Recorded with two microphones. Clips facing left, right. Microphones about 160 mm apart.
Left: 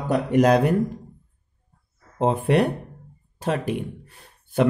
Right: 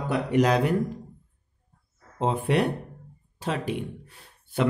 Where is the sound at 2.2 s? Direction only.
50° left (ahead or behind).